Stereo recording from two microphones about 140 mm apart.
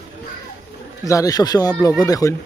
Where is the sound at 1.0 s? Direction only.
25° left (ahead or behind).